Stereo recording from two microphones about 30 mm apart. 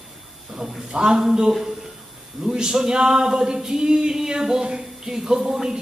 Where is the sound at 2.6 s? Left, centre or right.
Right.